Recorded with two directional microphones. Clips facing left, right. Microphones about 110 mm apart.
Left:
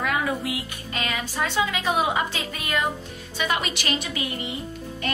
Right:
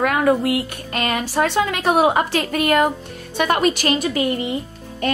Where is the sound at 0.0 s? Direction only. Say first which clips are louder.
Right 9 dB; 55° right (ahead or behind).